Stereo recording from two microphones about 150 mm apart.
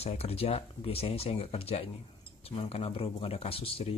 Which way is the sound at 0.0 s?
40° left (ahead or behind).